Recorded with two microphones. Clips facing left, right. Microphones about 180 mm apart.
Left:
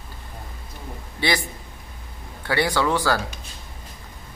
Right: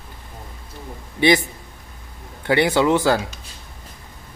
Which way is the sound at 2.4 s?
20° right (ahead or behind).